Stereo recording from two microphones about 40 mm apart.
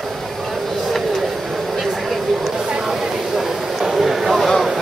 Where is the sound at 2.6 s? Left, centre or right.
Centre.